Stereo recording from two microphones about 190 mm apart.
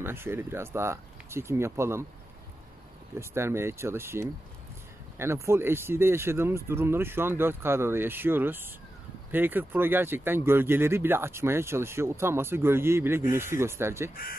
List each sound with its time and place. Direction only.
0.0 s speech: 10° right (ahead or behind)
3.2 s speech: 15° right (ahead or behind)